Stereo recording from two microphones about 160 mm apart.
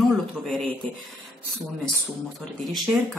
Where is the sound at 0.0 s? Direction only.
5° left (ahead or behind).